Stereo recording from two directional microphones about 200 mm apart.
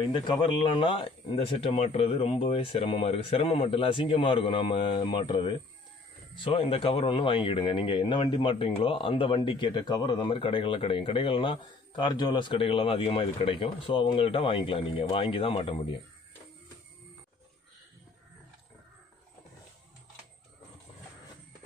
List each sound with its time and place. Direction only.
0.0 s speech: 25° left (ahead or behind)